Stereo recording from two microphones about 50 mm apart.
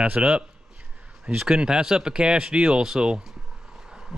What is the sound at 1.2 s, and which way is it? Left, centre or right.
Speech, right.